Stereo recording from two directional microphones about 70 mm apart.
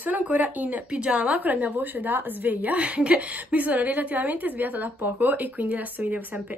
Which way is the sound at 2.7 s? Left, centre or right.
Centre.